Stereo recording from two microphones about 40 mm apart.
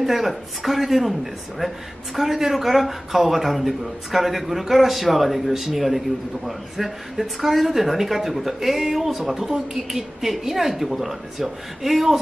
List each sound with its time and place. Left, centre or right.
0.0 s speech: centre